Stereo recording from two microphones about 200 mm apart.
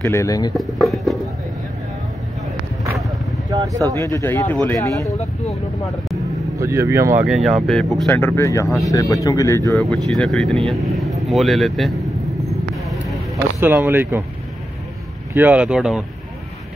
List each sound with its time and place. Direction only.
0.0 s speech: 15° left (ahead or behind)
0.6 s speech: centre (ahead or behind)
3.4 s speech: 15° right (ahead or behind)
3.9 s speech: 10° left (ahead or behind)
5.1 s speech: 30° left (ahead or behind)
6.6 s speech: 15° right (ahead or behind)
7.2 s speech: centre (ahead or behind); by 9.6 s 15° left (ahead or behind)
9.8 s speech: centre (ahead or behind)
12.7 s vehicle: centre (ahead or behind)
13.6 s speech: 10° right (ahead or behind)
15.3 s speech: 10° right (ahead or behind)